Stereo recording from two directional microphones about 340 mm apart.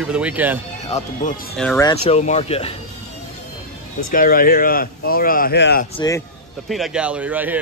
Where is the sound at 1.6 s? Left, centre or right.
Centre.